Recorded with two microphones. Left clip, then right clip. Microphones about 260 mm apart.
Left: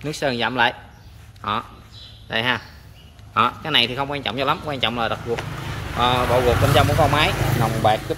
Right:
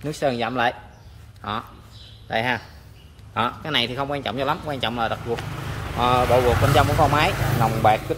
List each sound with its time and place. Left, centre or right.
0.0 s a man's voice: centre